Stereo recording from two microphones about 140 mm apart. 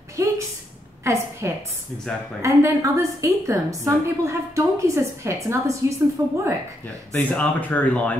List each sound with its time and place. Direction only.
0.2 s a sound: 20° right (ahead or behind)
1.4 s a woman's voice: 20° right (ahead or behind)
7.1 s speech: 10° left (ahead or behind)